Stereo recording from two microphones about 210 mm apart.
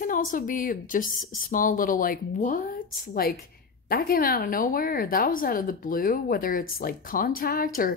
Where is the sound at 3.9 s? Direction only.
45° left (ahead or behind).